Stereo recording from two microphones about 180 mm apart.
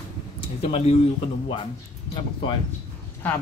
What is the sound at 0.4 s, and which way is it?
Speech, 30° left (ahead or behind).